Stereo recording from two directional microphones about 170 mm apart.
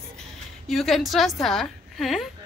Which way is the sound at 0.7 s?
Centre (ahead or behind).